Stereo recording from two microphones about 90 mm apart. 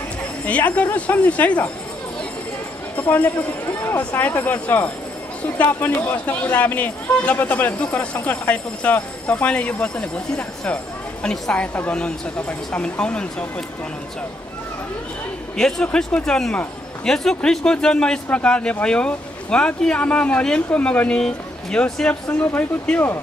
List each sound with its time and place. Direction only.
0.5 s speech: 15° left (ahead or behind)
3.0 s a man's voice: 20° left (ahead or behind)
15.5 s speech: 10° left (ahead or behind)
22.4 s a man's voice: 20° left (ahead or behind)